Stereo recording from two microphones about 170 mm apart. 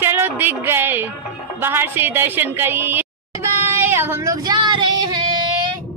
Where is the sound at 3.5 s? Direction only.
15° right (ahead or behind).